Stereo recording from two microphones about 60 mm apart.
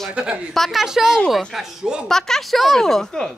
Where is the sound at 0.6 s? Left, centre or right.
Centre.